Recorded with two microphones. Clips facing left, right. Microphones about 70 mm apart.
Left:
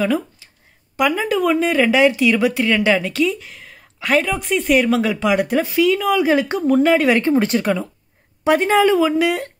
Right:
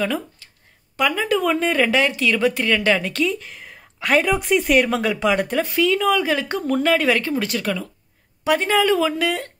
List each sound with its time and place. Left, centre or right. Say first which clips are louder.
0.4 s a sound: even; centre
0.9 s speech: left 2 dB; centre
6.2 s speech: left 5 dB; centre